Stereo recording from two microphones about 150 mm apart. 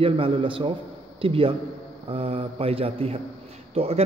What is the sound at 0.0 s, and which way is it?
Speech, 35° right (ahead or behind).